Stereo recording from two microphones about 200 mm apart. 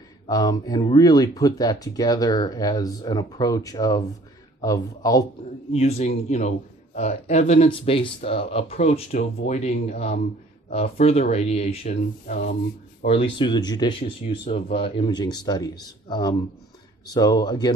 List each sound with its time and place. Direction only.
0.3 s a man's voice: 20° left (ahead or behind)
5.7 s speech: 30° left (ahead or behind)